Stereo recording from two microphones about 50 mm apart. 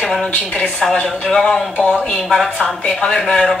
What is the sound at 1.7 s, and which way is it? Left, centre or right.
Speech, left.